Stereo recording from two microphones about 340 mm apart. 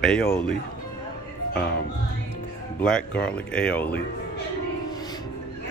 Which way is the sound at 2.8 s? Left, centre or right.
Centre.